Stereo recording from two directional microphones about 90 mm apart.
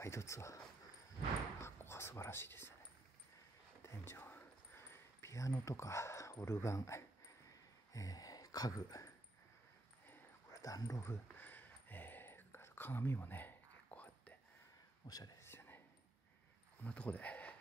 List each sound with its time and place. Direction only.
0.0 s speech: 30° left (ahead or behind)
1.6 s whispering: 30° left (ahead or behind)
3.8 s a sound: 30° left (ahead or behind)
10.5 s speech: 40° left (ahead or behind)
11.1 s whispering: 20° left (ahead or behind)
15.0 s speech: 45° left (ahead or behind)
15.4 s whispering: 25° left (ahead or behind)
16.8 s speech: 15° left (ahead or behind)